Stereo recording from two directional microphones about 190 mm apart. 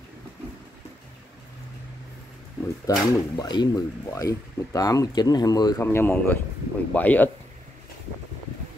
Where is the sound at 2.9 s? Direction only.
20° left (ahead or behind).